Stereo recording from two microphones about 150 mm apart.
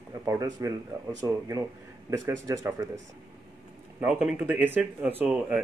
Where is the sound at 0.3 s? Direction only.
25° right (ahead or behind).